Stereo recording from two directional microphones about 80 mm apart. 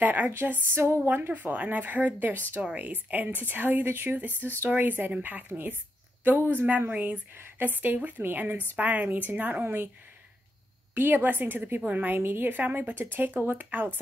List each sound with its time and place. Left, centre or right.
0.0 s a woman's voice: right
11.0 s a woman's voice: right